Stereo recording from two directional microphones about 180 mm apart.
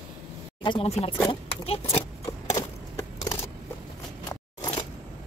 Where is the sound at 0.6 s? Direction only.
35° left (ahead or behind).